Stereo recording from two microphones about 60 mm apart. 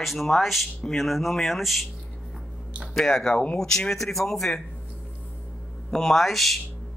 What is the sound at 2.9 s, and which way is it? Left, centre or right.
Speech, centre.